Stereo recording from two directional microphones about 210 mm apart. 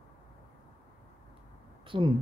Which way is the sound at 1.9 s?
25° right (ahead or behind).